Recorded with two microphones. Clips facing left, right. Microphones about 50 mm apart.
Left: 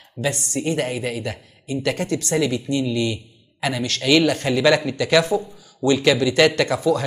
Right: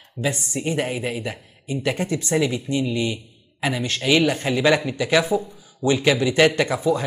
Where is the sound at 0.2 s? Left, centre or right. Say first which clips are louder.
Left 1 dB; centre.